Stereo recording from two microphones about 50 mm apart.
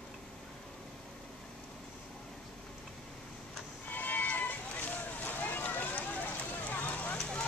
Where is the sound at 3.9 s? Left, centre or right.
Left.